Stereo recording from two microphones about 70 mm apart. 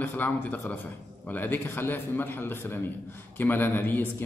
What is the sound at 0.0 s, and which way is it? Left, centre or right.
A man's voice, left.